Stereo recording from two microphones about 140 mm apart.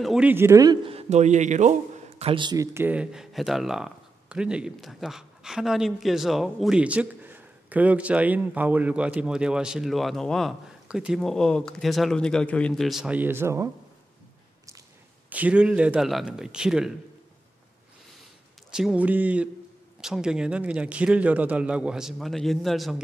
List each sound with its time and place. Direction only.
0.0 s a man's voice: 5° right (ahead or behind)
0.3 s speech: 20° right (ahead or behind)
0.8 s a man's voice: 50° right (ahead or behind); by 13.7 s 20° right (ahead or behind)
15.2 s a man's voice: 10° right (ahead or behind)
18.7 s a man's voice: 5° right (ahead or behind)